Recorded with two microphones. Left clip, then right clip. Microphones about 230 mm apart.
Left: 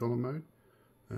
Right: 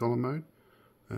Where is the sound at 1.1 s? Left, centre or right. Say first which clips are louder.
Right 4 dB; right.